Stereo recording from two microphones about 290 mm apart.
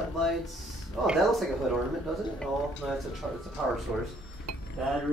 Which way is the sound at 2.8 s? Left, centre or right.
Centre.